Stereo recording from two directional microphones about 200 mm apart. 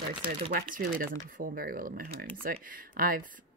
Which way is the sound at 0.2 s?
50° right (ahead or behind).